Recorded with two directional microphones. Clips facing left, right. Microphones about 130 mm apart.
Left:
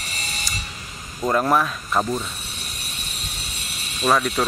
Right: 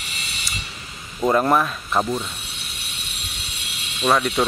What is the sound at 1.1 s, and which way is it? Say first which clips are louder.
Speech: right 2 dB; 5° right (ahead or behind).